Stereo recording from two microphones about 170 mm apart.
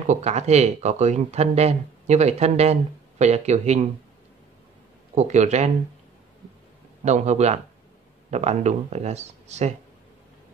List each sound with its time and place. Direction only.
0.0 s speech: 45° right (ahead or behind)
5.1 s speech: 45° right (ahead or behind)
7.1 s speech: 40° right (ahead or behind)